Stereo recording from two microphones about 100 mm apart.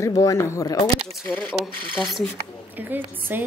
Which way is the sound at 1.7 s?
55° right (ahead or behind).